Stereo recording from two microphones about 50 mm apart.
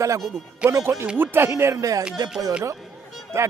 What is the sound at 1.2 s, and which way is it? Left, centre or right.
Speech, right.